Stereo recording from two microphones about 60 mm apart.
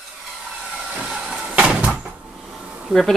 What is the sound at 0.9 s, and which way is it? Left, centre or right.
Vehicle, centre.